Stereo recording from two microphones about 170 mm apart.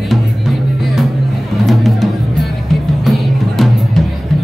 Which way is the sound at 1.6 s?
Centre (ahead or behind).